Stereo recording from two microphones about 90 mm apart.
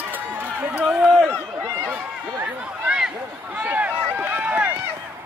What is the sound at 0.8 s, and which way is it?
Run, 5° right (ahead or behind).